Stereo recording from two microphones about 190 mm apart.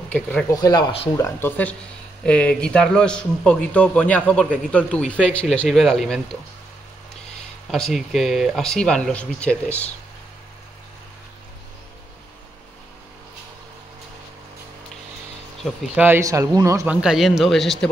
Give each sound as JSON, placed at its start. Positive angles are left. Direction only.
{"t": 0.1, "sound": "speech", "side_deg": 10}
{"t": 0.6, "sound": "speech", "side_deg": 20}
{"t": 1.1, "sound": "a man's voice", "side_deg": 15}
{"t": 7.7, "sound": "a man's voice", "side_deg": 0}
{"t": 16.0, "sound": "a man's voice", "side_deg": -15}